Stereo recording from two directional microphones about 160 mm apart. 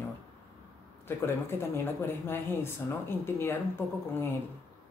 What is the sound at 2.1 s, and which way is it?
Speech, 15° left (ahead or behind).